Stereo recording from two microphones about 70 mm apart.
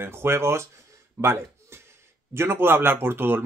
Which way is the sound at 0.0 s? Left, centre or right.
Right.